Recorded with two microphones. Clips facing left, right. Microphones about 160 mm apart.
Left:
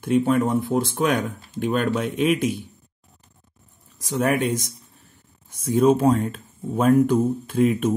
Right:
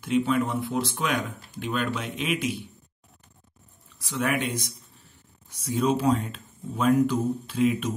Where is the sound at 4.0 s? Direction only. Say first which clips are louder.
Left 6 dB; 40° left (ahead or behind).